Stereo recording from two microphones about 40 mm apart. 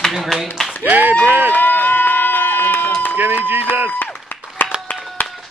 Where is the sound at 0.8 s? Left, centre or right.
Right.